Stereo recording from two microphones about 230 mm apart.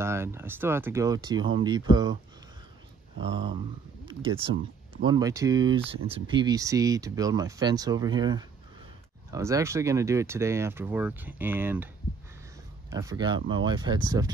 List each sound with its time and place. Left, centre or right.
0.0 s speech: centre
3.2 s speech: right
12.9 s speech: centre